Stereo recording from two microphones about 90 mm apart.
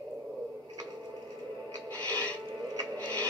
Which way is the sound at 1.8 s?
15° left (ahead or behind).